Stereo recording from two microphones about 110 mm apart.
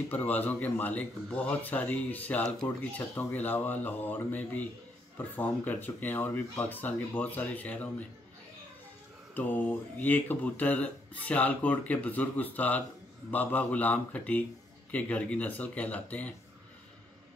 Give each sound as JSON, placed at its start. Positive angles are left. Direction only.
{"t": 0.1, "sound": "speech", "side_deg": 15}
{"t": 9.3, "sound": "speech", "side_deg": 15}